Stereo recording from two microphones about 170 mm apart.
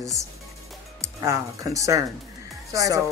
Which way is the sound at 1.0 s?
20° right (ahead or behind).